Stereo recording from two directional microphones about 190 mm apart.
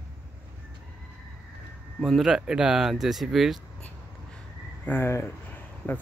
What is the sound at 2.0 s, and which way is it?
Speech, centre (ahead or behind).